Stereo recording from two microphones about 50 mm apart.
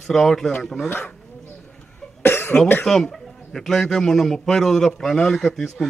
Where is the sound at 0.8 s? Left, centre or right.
Left.